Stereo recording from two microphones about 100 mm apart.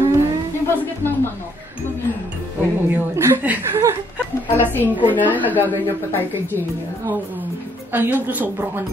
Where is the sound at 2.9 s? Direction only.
20° right (ahead or behind).